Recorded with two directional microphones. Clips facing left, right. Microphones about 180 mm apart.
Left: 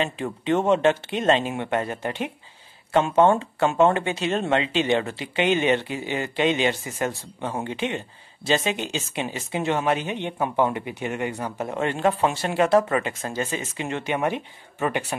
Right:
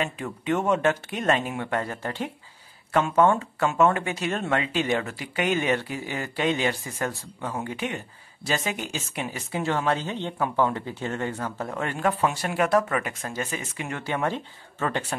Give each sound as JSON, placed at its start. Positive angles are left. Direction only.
{"t": 0.0, "sound": "a woman's voice", "side_deg": 30}